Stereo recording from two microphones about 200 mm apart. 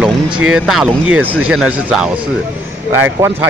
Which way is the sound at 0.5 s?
Centre (ahead or behind).